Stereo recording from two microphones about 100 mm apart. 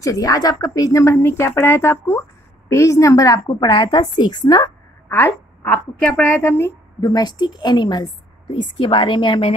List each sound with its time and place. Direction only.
0.0 s a woman's voice: 35° left (ahead or behind)
3.4 s a woman's voice: 45° left (ahead or behind)
5.0 s a woman's voice: 20° left (ahead or behind)
7.0 s a woman's voice: 45° left (ahead or behind)
8.5 s speech: 60° left (ahead or behind)